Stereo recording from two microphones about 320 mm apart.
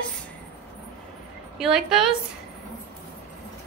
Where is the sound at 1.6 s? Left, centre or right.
Centre.